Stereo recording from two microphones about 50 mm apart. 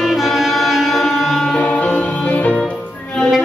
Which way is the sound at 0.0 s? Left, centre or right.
Centre.